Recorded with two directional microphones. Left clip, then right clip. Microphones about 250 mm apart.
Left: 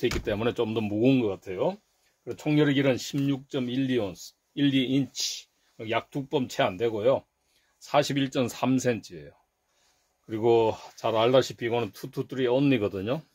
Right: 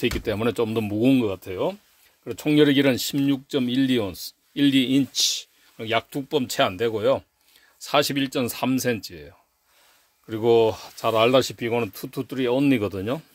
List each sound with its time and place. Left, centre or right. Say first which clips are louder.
0.0 s speech: right 3 dB; right
1.3 s speech: right 2 dB; right
10.3 s speech: right 4 dB; right